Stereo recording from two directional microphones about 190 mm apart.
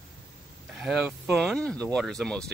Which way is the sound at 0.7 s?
Centre (ahead or behind).